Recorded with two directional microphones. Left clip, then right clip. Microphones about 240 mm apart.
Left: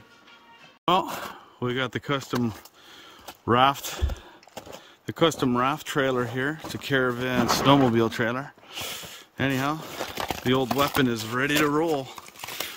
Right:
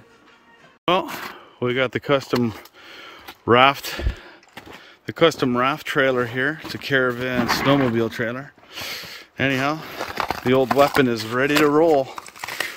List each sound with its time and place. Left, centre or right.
0.8 s speech: centre
4.1 s a sound: left
5.0 s speech: centre